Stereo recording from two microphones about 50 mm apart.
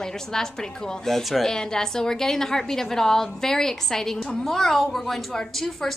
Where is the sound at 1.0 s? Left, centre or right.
Centre.